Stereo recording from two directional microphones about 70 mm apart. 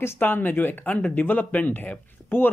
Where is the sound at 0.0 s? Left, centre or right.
Left.